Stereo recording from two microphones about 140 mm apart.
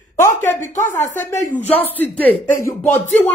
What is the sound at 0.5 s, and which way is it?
Speech, 60° left (ahead or behind).